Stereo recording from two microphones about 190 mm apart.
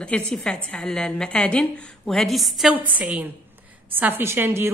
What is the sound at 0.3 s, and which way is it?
A woman's voice, 5° left (ahead or behind).